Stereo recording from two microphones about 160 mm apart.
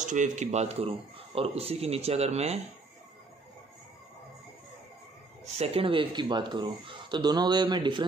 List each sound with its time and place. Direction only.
0.0 s speech: 50° right (ahead or behind)
5.4 s speech: 40° right (ahead or behind)